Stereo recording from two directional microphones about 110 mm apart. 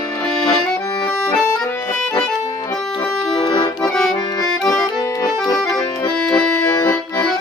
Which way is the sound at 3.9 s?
5° left (ahead or behind).